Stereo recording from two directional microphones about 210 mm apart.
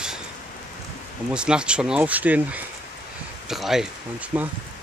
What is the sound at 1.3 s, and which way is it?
Speech, 5° right (ahead or behind).